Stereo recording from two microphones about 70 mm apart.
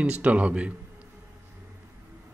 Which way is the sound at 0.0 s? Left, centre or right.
Centre.